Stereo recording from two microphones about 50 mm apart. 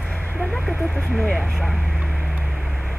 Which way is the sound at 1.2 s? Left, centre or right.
Left.